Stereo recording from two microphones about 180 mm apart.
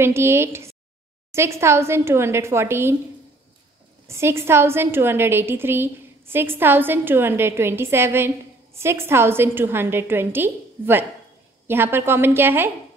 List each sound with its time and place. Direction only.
0.0 s a woman's voice: 15° right (ahead or behind)
4.1 s a woman's voice: 15° right (ahead or behind)